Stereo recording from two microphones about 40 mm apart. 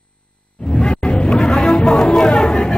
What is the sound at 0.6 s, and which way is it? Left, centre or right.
Music, left.